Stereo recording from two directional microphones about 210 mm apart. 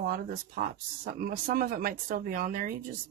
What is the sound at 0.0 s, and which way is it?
Speech, 45° right (ahead or behind).